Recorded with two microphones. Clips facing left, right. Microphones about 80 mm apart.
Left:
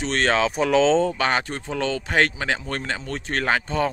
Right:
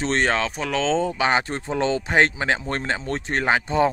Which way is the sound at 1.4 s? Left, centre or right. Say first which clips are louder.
Right 3 dB; right.